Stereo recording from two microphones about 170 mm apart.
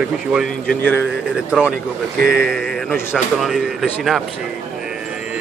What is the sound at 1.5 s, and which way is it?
Speech, 5° right (ahead or behind).